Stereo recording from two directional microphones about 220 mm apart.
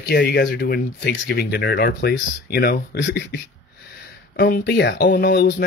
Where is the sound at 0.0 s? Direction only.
50° left (ahead or behind).